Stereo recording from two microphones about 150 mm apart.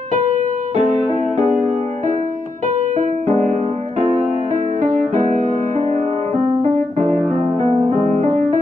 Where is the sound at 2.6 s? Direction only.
55° right (ahead or behind).